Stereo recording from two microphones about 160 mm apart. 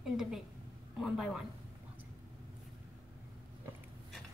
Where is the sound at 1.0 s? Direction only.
Centre (ahead or behind).